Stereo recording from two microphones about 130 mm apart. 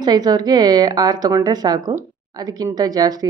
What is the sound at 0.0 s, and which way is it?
A woman's voice, 30° right (ahead or behind).